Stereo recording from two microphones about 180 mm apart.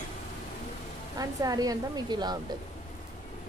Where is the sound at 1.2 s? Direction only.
20° right (ahead or behind).